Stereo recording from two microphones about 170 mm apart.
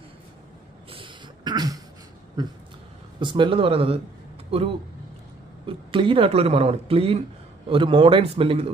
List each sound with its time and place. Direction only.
0.9 s a sound: 25° right (ahead or behind)
2.4 s dog: 25° right (ahead or behind)
3.2 s speech: 30° right (ahead or behind)